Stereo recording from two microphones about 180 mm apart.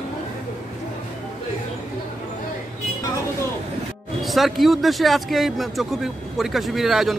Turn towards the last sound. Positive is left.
turn(degrees=0)  # may be behind; listen again after turning